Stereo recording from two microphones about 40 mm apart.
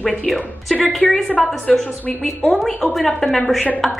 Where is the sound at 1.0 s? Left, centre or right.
Centre.